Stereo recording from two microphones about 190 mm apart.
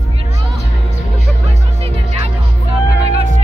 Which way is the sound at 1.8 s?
30° right (ahead or behind).